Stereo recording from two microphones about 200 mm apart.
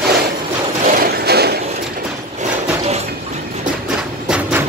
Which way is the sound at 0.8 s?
55° right (ahead or behind).